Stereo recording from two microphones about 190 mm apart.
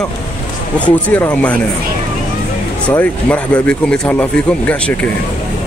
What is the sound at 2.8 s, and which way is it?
Speech, 5° left (ahead or behind).